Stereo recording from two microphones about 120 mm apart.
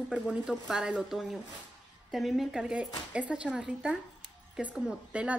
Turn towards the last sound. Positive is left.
turn(degrees=-10)  # may be behind; listen again after turning